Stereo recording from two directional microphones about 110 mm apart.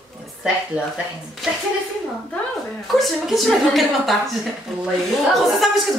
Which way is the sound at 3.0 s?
Centre (ahead or behind).